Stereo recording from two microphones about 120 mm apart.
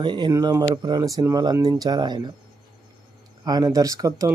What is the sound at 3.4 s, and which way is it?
Speech, 30° right (ahead or behind).